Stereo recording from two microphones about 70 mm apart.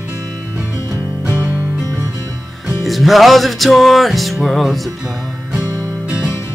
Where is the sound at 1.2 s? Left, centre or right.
Right.